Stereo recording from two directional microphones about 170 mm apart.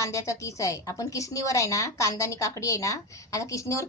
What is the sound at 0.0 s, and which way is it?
A woman's voice, 20° left (ahead or behind).